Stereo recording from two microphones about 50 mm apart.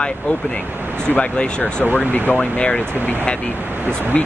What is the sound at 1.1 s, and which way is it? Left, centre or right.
Speech, left.